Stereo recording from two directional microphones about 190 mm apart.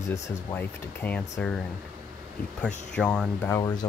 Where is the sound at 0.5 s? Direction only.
10° left (ahead or behind).